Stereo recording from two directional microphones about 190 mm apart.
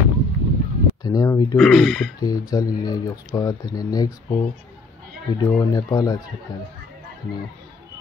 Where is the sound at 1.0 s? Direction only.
15° left (ahead or behind).